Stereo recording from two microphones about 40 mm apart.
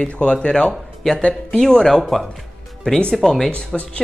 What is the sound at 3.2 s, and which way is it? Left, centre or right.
Speech, centre.